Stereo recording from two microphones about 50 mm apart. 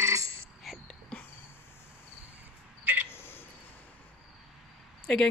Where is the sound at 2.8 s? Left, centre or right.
Right.